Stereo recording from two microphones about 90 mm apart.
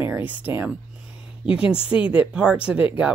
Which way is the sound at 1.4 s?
10° right (ahead or behind).